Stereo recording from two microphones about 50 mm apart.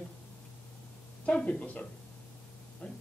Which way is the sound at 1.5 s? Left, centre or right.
Left.